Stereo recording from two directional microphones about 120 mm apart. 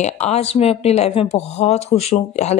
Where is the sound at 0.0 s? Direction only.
65° left (ahead or behind).